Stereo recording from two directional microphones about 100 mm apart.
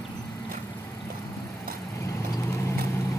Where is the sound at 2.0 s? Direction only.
30° left (ahead or behind).